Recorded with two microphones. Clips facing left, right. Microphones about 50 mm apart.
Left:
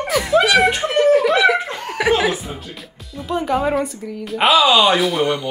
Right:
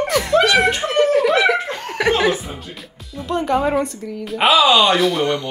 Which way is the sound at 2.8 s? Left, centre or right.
Centre.